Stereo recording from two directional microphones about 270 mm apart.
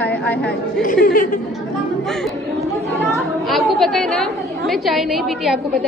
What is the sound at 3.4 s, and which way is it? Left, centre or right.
A woman's voice, centre.